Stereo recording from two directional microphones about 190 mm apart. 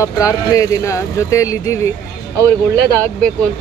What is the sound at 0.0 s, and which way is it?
Speech, 15° left (ahead or behind).